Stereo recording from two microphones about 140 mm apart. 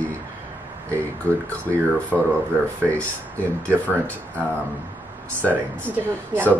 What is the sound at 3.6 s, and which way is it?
Speech, 10° left (ahead or behind).